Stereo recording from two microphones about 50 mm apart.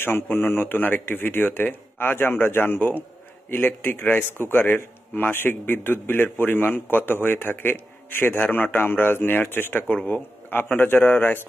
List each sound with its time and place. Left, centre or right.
0.0 s a man's voice: left